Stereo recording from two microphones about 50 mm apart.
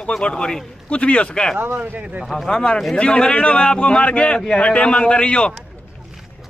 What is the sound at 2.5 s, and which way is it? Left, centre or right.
Speech, centre.